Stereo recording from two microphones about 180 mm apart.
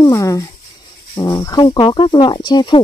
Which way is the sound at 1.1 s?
20° left (ahead or behind).